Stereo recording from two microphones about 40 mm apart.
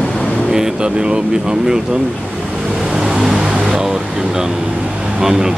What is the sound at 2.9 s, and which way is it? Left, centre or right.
Vehicle, centre.